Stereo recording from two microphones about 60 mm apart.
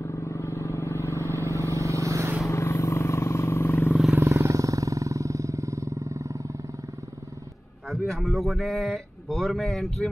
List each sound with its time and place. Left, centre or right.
0.0 s vehicle: left
1.3 s vehicle: right
2.4 s wild animals: left
4.2 s vehicle: right
7.9 s a man's voice: centre